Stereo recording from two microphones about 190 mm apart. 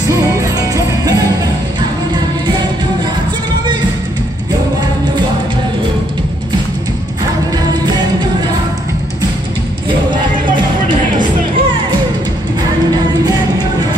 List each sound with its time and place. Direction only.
0.1 s music: 15° right (ahead or behind)
9.8 s music: 25° right (ahead or behind)